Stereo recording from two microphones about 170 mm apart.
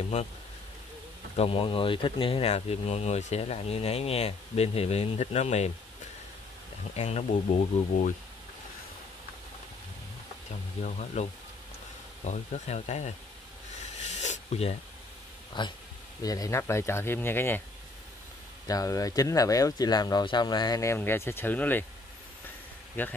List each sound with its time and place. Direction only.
1.3 s speech: 35° left (ahead or behind)
7.0 s speech: 40° left (ahead or behind)
10.8 s speech: 40° left (ahead or behind)
12.3 s speech: 45° left (ahead or behind)
14.0 s a sound: 45° left (ahead or behind)
15.6 s speech: 25° left (ahead or behind)
18.7 s speech: 20° left (ahead or behind)
23.0 s speech: 10° left (ahead or behind)